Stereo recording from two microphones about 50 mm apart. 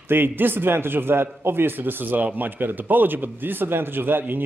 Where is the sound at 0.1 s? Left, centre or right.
Right.